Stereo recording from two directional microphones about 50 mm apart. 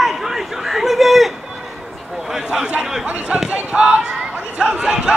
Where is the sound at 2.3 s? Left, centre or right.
Centre.